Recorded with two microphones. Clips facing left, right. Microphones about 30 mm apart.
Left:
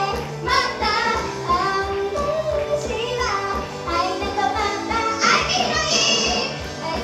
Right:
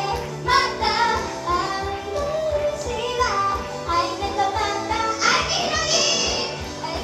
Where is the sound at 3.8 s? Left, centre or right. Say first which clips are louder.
Even; centre.